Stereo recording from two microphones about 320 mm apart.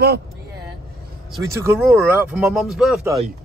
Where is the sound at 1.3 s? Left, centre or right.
Centre.